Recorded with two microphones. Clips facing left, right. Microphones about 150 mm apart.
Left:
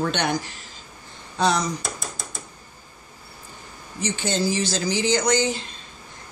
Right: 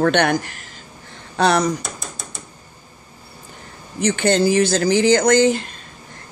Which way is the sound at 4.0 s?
65° right (ahead or behind).